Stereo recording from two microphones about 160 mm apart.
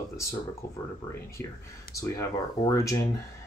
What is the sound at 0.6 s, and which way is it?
Speech, 65° left (ahead or behind).